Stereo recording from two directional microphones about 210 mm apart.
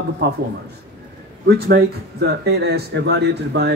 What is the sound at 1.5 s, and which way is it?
Speech, 50° right (ahead or behind).